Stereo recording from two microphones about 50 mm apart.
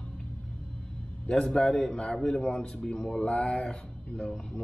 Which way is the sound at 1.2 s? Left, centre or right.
Centre.